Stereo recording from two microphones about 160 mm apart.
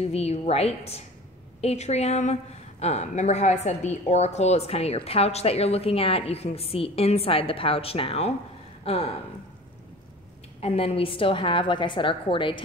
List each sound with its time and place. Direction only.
0.0 s a woman's voice: 40° left (ahead or behind)
10.6 s a woman's voice: 40° left (ahead or behind)